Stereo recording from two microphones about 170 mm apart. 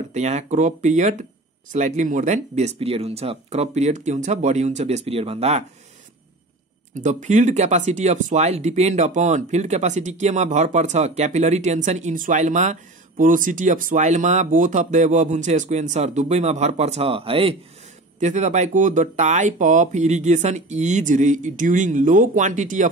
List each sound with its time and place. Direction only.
0.1 s speech: 40° right (ahead or behind)
6.9 s speech: 45° right (ahead or behind)